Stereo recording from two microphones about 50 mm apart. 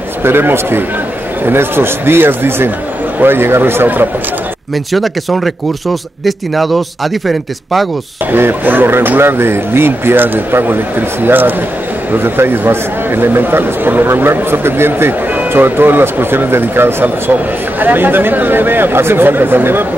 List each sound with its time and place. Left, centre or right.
0.2 s a man's voice: right
4.9 s speech: centre
8.3 s a man's voice: right
17.3 s a man's voice: right